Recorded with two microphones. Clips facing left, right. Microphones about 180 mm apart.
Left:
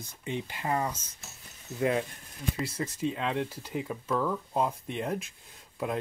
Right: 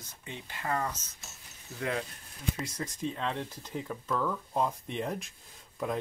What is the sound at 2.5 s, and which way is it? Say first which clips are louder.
Speech: left 4 dB; 5° left (ahead or behind).